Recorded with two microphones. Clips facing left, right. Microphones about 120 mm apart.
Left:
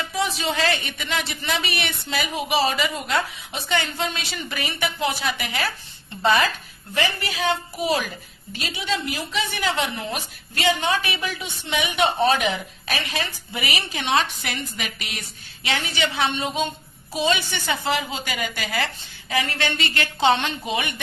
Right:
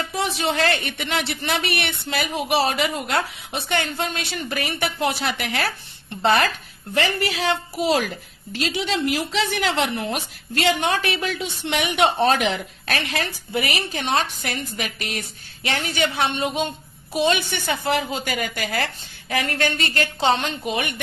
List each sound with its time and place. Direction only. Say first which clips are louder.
0.2 s a woman's voice: right 1 dB; 60° right (ahead or behind)
12.4 s a woman's voice: right 1 dB; 55° right (ahead or behind)